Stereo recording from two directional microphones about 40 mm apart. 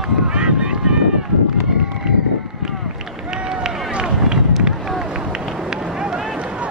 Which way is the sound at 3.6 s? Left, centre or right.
Centre.